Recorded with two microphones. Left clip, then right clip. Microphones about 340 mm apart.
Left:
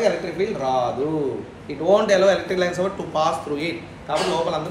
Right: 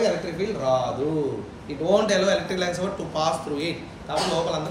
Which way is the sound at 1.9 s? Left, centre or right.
Left.